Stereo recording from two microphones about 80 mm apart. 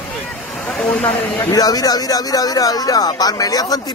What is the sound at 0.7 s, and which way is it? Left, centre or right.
Speech, centre.